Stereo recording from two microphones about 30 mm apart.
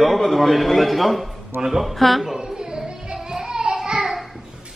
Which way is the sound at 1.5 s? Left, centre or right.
Centre.